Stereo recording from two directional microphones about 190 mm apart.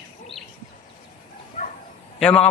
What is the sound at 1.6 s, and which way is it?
Bow-wow, 40° left (ahead or behind).